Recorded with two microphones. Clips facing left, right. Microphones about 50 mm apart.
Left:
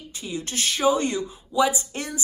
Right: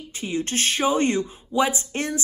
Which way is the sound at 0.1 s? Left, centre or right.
Right.